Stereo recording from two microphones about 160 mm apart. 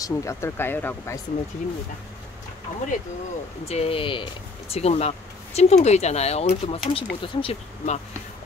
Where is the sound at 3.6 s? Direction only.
40° left (ahead or behind).